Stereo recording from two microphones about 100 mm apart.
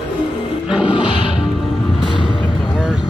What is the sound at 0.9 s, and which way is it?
Music, 55° left (ahead or behind).